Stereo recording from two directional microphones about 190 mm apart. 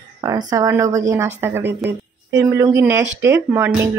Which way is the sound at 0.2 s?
20° right (ahead or behind).